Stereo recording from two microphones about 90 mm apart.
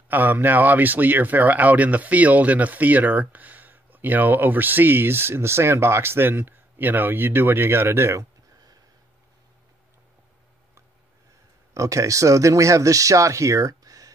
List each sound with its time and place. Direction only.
0.1 s speech: 20° right (ahead or behind)
11.7 s speech: 35° right (ahead or behind)